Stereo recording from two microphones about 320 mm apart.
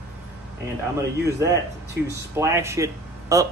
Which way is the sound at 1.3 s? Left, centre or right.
Centre.